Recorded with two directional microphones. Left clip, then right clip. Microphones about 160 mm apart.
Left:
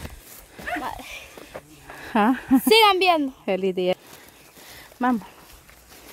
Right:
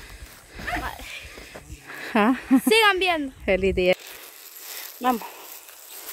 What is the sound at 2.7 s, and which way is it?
Speech, 60° left (ahead or behind).